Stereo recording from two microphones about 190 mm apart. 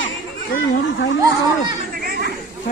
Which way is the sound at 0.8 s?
75° left (ahead or behind).